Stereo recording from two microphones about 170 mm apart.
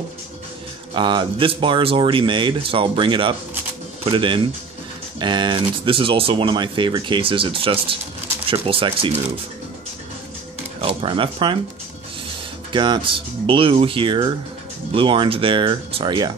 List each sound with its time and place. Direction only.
0.9 s speech: 30° right (ahead or behind)
10.8 s speech: 30° right (ahead or behind)
12.7 s speech: 30° right (ahead or behind)